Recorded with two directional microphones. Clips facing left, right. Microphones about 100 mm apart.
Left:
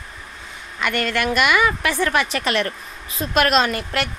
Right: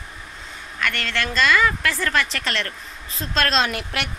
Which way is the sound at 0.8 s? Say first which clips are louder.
Left 4 dB; 10° left (ahead or behind).